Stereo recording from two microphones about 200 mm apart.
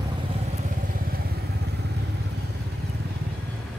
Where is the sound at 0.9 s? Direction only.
50° right (ahead or behind).